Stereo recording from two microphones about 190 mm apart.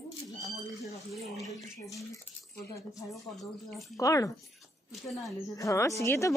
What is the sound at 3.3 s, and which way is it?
Speech, centre (ahead or behind).